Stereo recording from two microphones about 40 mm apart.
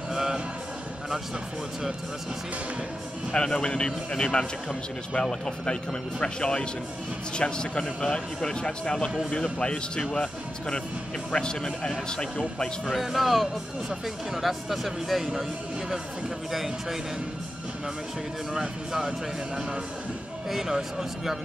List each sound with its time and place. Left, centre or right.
0.1 s a sound: centre
3.3 s a man's voice: centre
13.0 s speech: centre
16.5 s speech: centre
18.5 s speech: centre